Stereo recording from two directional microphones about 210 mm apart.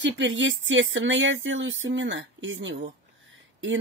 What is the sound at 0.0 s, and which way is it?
Speech, 60° right (ahead or behind).